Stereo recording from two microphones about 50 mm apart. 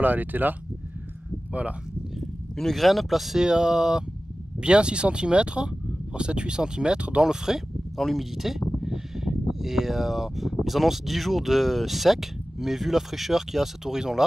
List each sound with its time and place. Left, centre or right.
0.0 s speech: right
1.5 s speech: right
2.5 s speech: centre
3.4 s speech: centre